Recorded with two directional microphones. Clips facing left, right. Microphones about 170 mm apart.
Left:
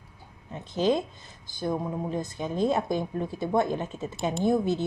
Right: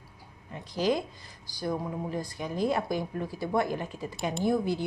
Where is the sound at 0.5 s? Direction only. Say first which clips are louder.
Left 3 dB; 25° left (ahead or behind).